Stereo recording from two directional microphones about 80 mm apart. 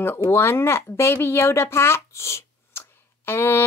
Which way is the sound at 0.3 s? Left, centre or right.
Left.